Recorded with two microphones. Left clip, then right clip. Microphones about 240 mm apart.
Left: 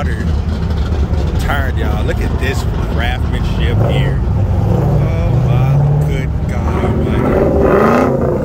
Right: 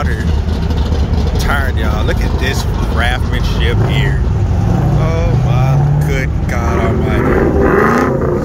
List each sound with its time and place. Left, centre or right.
5.0 s vehicle: centre
7.2 s vehicle: left